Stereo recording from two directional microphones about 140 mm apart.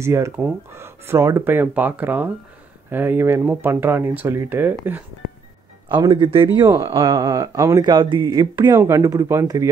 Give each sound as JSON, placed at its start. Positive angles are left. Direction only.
{"t": 0.0, "sound": "speech", "side_deg": -20}
{"t": 5.9, "sound": "speech", "side_deg": -35}